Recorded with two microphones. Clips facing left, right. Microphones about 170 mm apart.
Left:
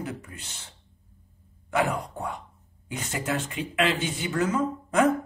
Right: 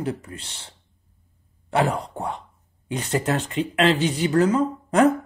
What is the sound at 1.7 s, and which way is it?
Speech, 30° right (ahead or behind).